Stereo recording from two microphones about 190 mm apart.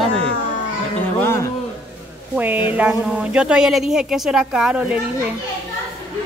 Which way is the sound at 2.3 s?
10° right (ahead or behind).